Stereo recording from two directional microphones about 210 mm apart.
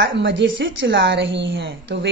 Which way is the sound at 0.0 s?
60° right (ahead or behind).